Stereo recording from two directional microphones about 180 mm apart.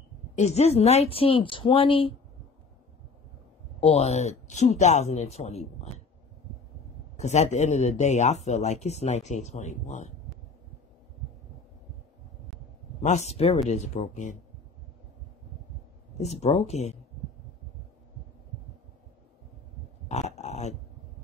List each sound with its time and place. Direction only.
0.4 s a woman's voice: 35° left (ahead or behind)
3.8 s speech: 35° left (ahead or behind)
7.2 s speech: 40° left (ahead or behind)
13.0 s speech: 40° left (ahead or behind)
16.2 s speech: 35° left (ahead or behind)
20.1 s pig: 40° left (ahead or behind)